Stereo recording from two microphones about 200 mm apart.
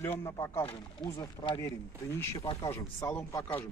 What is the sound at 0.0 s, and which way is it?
A man's voice, 15° left (ahead or behind).